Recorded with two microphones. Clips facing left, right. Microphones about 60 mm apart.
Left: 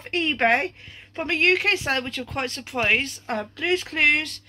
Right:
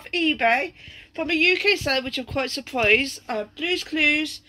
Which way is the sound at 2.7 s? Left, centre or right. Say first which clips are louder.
Right 3 dB; centre.